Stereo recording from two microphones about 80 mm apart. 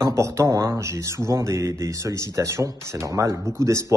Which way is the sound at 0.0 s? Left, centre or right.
Right.